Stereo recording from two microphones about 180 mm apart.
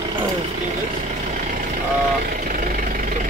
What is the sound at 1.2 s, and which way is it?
Vehicle, 45° right (ahead or behind).